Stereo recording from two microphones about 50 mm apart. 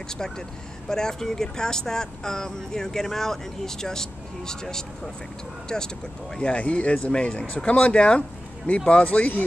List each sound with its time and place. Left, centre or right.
0.8 s speech: centre; by 9.4 s left